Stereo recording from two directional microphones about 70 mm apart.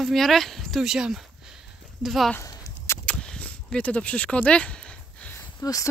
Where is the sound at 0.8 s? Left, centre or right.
Centre.